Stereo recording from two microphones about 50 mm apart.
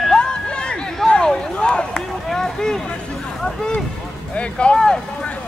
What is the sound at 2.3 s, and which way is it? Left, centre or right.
Speech, centre.